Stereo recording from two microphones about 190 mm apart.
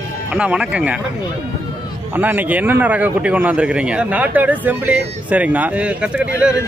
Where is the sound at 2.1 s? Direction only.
10° right (ahead or behind).